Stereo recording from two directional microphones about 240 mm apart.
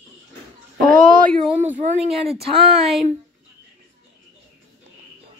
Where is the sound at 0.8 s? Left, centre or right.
Right.